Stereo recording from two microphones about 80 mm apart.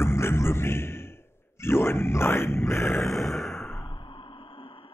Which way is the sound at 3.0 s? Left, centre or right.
Centre.